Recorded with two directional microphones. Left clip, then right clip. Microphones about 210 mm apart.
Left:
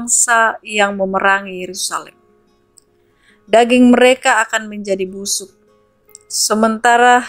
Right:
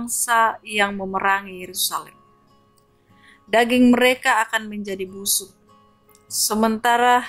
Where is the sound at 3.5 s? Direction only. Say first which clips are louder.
Left 7 dB; 5° left (ahead or behind).